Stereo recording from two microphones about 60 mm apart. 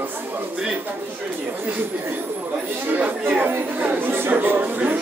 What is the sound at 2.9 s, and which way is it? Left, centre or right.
Chatter, right.